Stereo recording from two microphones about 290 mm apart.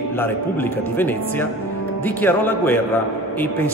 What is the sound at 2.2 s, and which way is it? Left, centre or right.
Speech, centre.